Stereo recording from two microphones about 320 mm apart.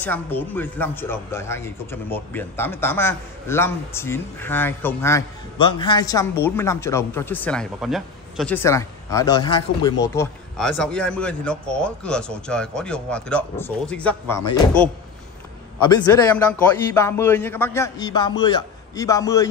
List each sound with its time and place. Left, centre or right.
0.0 s speech: centre
15.9 s speech: centre